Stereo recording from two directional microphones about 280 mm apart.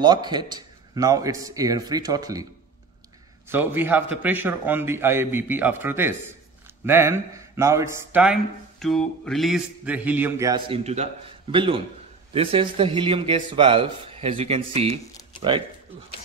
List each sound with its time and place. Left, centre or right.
0.0 s speech: centre
3.4 s speech: centre